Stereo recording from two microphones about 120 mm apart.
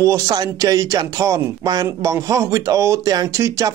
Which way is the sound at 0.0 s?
30° right (ahead or behind).